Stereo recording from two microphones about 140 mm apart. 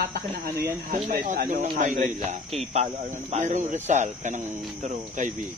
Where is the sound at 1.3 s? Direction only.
65° right (ahead or behind).